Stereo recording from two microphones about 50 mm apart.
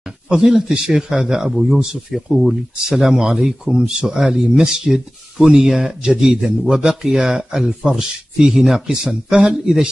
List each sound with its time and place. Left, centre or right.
0.0 s speech: centre
1.5 s speech: centre
1.8 s speech: centre